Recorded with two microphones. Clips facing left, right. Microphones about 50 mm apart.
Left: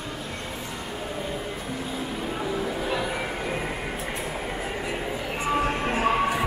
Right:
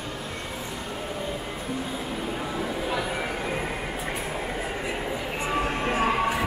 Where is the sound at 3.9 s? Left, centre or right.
Centre.